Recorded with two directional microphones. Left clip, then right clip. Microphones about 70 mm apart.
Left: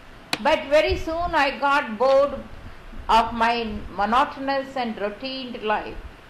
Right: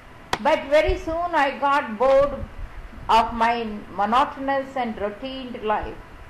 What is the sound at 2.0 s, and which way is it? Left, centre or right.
A woman's voice, centre.